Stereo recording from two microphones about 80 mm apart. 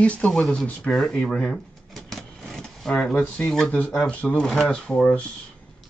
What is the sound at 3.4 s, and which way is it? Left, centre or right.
Speech, centre.